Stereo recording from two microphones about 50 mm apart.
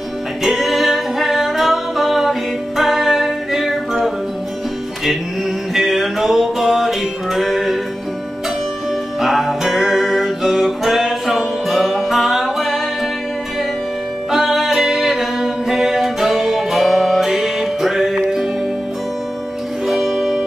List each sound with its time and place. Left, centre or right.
0.4 s music: centre
5.8 s music: centre
9.2 s music: centre
14.3 s music: centre
19.9 s music: centre